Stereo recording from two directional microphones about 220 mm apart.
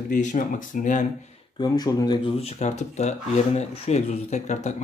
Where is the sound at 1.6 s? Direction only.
15° left (ahead or behind).